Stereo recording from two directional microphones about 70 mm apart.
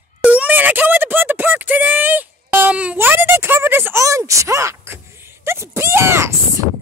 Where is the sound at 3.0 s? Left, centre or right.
Right.